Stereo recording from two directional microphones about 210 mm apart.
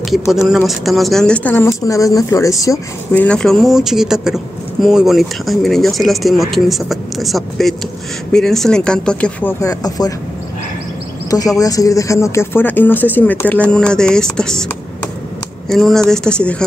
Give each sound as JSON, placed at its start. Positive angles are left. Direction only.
{"t": 0.3, "sound": "speech", "side_deg": 0}
{"t": 11.2, "sound": "speech", "side_deg": 15}
{"t": 15.7, "sound": "speech", "side_deg": 0}